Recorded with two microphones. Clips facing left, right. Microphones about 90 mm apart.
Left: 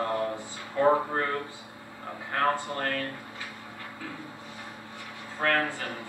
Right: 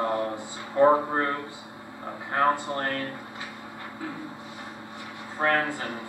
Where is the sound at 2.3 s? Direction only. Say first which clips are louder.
Right 3 dB; 20° right (ahead or behind).